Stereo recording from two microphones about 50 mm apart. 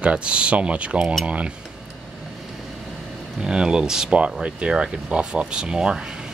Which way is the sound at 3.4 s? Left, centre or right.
Centre.